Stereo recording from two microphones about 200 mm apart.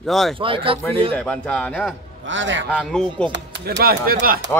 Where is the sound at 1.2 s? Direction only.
5° left (ahead or behind).